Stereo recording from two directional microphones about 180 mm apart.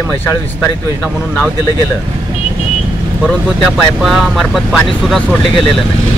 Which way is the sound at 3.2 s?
Centre (ahead or behind).